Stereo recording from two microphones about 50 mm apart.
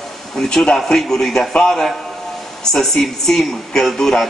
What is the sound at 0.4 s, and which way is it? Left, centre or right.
A man's voice, centre.